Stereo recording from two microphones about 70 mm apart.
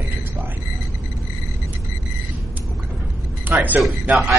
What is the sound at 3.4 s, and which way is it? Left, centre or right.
Speech, right.